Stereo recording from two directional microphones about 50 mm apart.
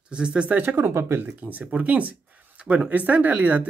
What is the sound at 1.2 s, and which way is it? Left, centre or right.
Speech, right.